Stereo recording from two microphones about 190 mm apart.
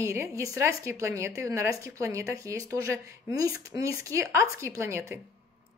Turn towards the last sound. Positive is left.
turn(degrees=-15)  # may be behind; listen again after turning